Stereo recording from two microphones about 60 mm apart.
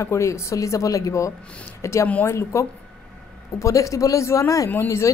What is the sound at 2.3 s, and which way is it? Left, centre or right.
Speech, left.